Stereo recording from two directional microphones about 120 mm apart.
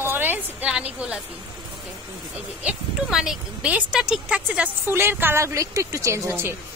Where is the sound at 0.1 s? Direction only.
15° right (ahead or behind).